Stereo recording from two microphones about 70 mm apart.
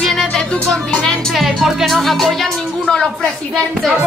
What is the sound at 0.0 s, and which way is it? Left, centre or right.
Music, centre.